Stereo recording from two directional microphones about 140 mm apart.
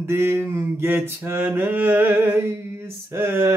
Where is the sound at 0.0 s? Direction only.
20° right (ahead or behind).